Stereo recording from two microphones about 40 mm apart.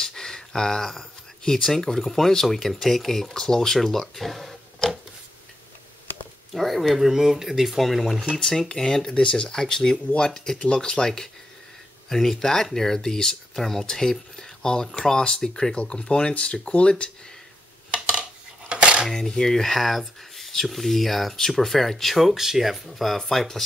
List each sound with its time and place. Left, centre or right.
0.0 s a sound: centre
1.4 s speech: centre
4.8 s a sound: centre
6.5 s speech: centre
7.1 s speech: centre
8.4 s speech: centre
9.1 s speech: left
12.1 s speech: centre; by 16.9 s left
18.7 s cutlery: right
19.0 s speech: centre